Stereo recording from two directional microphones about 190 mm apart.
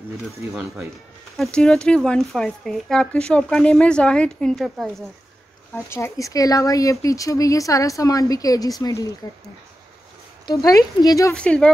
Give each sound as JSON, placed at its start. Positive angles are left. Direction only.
{"t": 0.5, "sound": "speech", "side_deg": -10}
{"t": 1.3, "sound": "speech", "side_deg": 0}
{"t": 5.8, "sound": "speech", "side_deg": 15}
{"t": 10.4, "sound": "speech", "side_deg": 20}
{"t": 11.3, "sound": "speech", "side_deg": 5}